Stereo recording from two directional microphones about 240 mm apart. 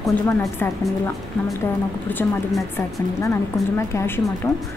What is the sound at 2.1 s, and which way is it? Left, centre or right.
A woman's voice, centre.